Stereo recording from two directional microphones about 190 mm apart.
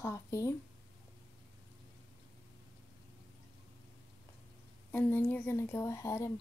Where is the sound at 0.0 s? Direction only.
15° left (ahead or behind).